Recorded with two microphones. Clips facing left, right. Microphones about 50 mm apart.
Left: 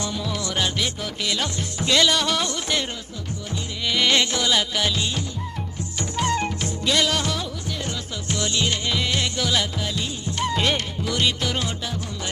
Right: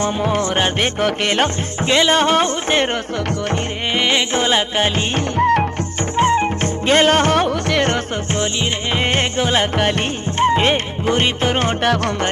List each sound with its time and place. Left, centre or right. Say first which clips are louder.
0.0 s music: right 10 dB; right
3.9 s music: right 3 dB; right
5.4 s music: right 19 dB; right
6.1 s music: right 8 dB; right
6.6 s music: right 8 dB; right
8.3 s music: right 1 dB; right
9.8 s music: right 10 dB; right
10.4 s music: right 8 dB; right